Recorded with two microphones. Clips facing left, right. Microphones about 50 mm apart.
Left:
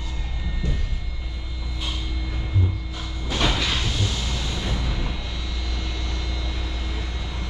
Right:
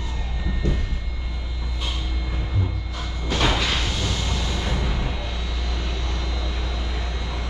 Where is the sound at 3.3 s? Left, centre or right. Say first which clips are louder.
Right 2 dB; centre.